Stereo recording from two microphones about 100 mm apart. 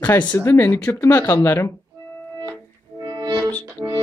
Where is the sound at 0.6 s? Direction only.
25° left (ahead or behind).